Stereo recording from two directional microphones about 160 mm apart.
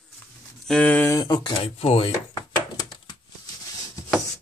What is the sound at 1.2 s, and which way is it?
Speech, 25° left (ahead or behind).